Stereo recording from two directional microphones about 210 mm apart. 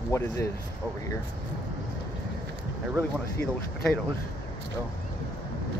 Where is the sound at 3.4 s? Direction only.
5° left (ahead or behind).